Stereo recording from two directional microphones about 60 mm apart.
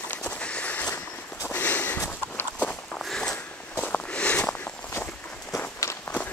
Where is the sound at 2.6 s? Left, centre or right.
Left.